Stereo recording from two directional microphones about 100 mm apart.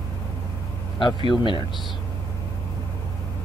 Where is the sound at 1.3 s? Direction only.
50° left (ahead or behind).